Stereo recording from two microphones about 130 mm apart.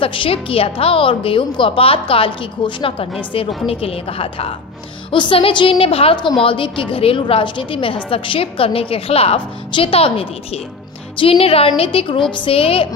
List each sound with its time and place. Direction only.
0.0 s a woman's voice: 40° left (ahead or behind)